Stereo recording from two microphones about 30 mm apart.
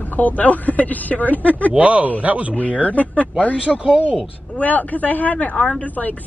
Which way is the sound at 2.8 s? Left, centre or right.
Left.